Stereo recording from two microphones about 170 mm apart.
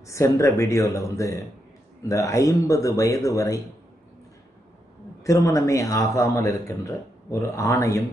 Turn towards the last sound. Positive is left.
turn(degrees=20)  # may be behind; listen again after turning